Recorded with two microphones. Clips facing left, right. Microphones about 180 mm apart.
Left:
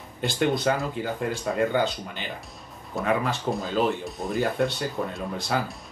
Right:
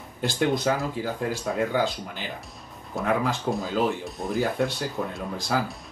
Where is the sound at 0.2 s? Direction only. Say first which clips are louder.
Even; centre (ahead or behind).